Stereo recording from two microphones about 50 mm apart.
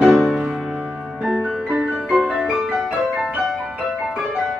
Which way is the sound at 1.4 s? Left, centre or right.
Right.